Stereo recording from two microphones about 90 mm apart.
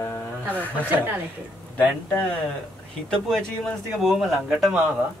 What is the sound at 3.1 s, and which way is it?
Speech, 10° left (ahead or behind).